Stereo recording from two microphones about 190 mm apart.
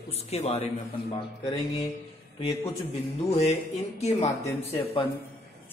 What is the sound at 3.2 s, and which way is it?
Music, 35° left (ahead or behind).